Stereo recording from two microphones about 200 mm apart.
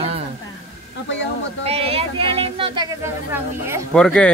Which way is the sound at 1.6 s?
30° right (ahead or behind).